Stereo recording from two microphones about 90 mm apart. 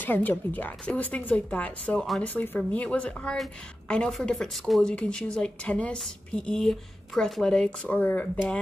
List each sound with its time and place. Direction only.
0.0 s speech: 20° left (ahead or behind)